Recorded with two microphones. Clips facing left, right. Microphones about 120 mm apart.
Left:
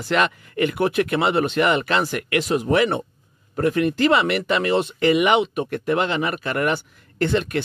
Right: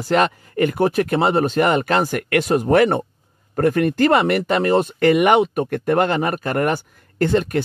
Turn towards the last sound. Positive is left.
turn(degrees=-40)  # may be behind; listen again after turning